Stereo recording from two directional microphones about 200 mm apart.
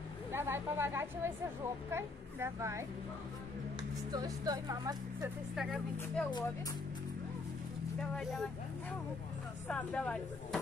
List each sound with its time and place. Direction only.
0.3 s a woman's voice: 10° right (ahead or behind)
4.1 s a woman's voice: 20° right (ahead or behind)
5.6 s speech: centre (ahead or behind)
8.1 s speech: centre (ahead or behind)
9.7 s speech: 5° left (ahead or behind)